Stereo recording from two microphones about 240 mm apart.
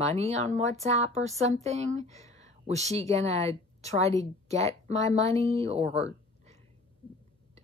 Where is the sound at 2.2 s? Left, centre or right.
Right.